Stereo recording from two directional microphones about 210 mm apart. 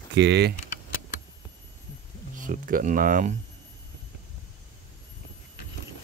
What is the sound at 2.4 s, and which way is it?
Speech, 40° right (ahead or behind).